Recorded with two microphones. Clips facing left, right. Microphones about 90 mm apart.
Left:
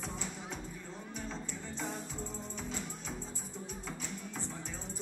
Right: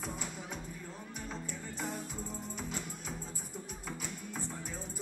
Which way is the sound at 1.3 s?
5° right (ahead or behind).